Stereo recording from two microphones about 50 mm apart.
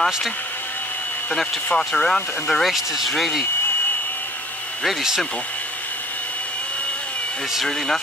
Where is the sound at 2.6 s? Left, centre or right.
Centre.